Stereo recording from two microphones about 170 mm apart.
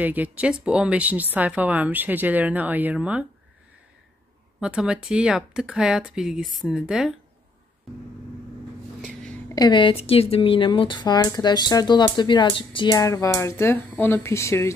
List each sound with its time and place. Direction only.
0.0 s speech: 10° right (ahead or behind)
4.6 s speech: 5° right (ahead or behind)
9.6 s speech: 30° left (ahead or behind)